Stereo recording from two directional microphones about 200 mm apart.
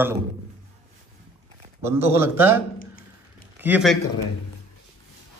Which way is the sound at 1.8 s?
10° right (ahead or behind).